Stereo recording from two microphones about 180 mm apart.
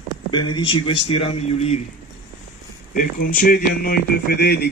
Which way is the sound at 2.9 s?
45° left (ahead or behind).